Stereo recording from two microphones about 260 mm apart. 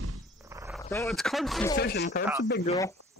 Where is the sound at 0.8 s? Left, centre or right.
Centre.